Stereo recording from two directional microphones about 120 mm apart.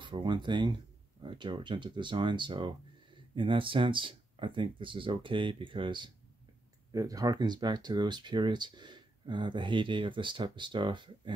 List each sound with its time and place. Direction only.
0.0 s speech: 40° right (ahead or behind)
6.9 s speech: 30° right (ahead or behind)